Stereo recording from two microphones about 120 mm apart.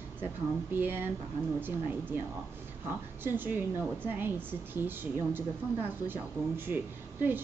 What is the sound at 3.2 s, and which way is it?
A woman's voice, 15° right (ahead or behind).